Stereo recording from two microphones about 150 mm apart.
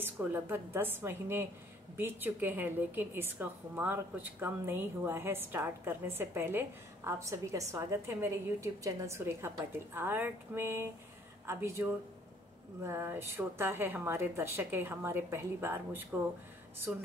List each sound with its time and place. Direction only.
0.0 s a woman's voice: 15° right (ahead or behind)